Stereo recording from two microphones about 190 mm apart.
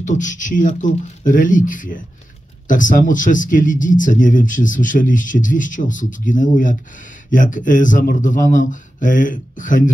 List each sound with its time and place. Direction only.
0.0 s speech: 40° left (ahead or behind)